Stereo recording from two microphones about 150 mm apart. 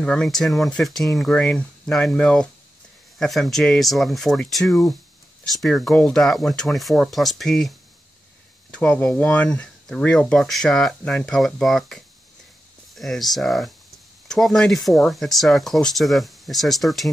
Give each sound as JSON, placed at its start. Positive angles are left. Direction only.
{"t": 0.0, "sound": "speech", "side_deg": 5}
{"t": 8.7, "sound": "speech", "side_deg": 10}